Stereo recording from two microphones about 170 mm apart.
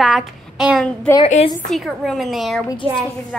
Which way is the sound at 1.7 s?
Centre (ahead or behind).